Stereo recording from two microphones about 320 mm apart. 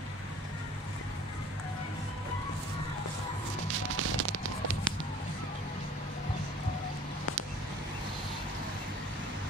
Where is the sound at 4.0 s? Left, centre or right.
Right.